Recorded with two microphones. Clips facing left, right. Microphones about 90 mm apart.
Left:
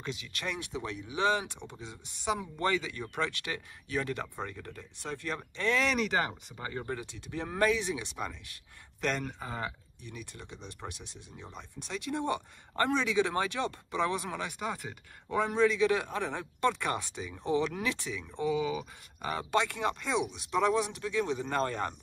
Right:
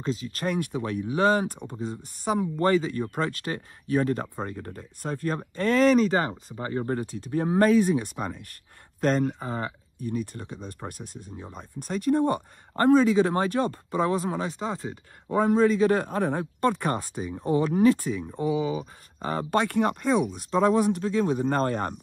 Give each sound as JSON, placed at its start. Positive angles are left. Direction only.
{"t": 0.0, "sound": "speech", "side_deg": -40}
{"t": 9.4, "sound": "speech", "side_deg": -35}
{"t": 10.1, "sound": "speech", "side_deg": -50}
{"t": 19.5, "sound": "speech", "side_deg": -50}